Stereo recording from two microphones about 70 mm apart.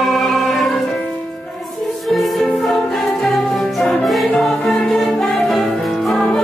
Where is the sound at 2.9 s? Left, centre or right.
Centre.